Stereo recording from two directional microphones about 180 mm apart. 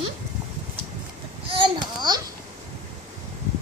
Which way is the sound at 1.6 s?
25° right (ahead or behind).